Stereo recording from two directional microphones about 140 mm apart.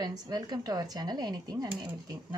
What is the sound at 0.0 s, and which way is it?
Speech, 30° right (ahead or behind).